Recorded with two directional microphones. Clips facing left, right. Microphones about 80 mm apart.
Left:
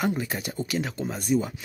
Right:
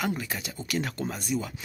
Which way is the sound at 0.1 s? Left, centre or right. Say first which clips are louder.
Left 3 dB; left.